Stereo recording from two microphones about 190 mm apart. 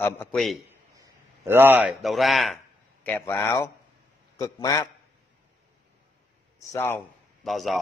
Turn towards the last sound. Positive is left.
turn(degrees=0)  # may be behind; listen again after turning